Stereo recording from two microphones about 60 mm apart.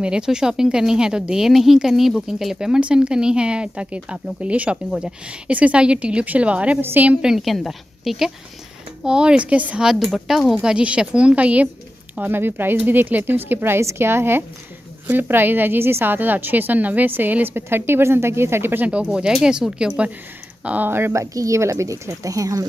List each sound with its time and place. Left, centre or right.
0.0 s speech: centre
6.8 s a woman's voice: right
7.1 s speech: centre
7.4 s a woman's voice: centre
9.0 s speech: centre
9.8 s speech: centre
12.2 s a woman's voice: right
18.9 s speech: centre
20.6 s speech: right
20.9 s a woman's voice: right
21.2 s speech: right